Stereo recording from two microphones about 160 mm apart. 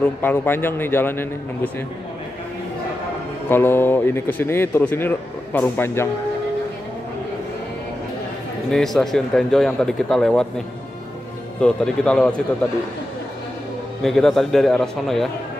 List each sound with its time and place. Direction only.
0.2 s speech: 15° left (ahead or behind)
3.4 s speech: 15° left (ahead or behind)
8.7 s speech: centre (ahead or behind)
11.6 s speech: 5° left (ahead or behind)
14.0 s speech: centre (ahead or behind)